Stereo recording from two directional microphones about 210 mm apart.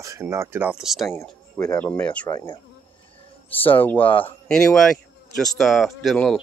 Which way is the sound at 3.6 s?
10° left (ahead or behind).